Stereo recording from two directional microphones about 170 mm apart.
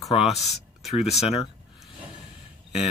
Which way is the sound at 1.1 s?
35° left (ahead or behind).